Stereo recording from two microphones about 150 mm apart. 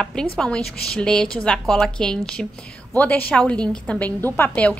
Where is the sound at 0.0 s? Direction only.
5° left (ahead or behind).